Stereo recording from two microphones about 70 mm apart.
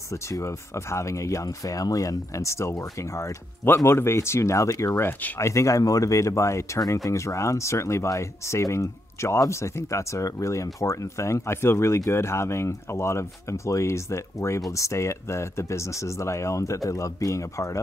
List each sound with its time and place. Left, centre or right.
0.1 s speech: left
3.6 s speech: left
4.9 s speech: left
5.4 s speech: left